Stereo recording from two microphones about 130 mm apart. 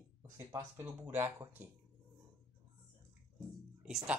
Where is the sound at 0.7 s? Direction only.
20° right (ahead or behind).